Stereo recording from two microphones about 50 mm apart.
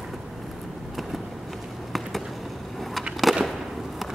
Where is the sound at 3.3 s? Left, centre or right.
Centre.